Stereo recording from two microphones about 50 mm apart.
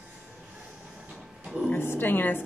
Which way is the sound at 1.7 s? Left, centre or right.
Left.